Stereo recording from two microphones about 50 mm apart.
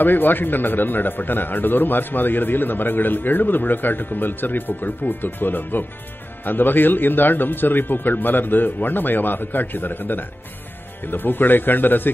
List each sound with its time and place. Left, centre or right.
0.0 s a man's voice: left